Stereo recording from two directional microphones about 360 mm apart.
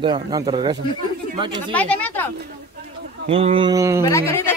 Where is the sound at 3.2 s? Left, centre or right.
Centre.